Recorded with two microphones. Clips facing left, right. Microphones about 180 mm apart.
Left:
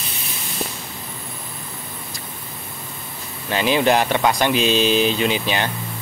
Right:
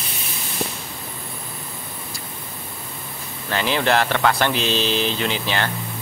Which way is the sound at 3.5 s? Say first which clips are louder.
Left 3 dB; 15° left (ahead or behind).